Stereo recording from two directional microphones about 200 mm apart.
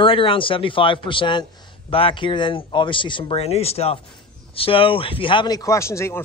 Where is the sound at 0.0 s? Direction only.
25° left (ahead or behind).